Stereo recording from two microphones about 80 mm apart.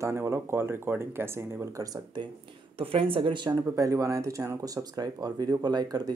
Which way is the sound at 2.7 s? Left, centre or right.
Right.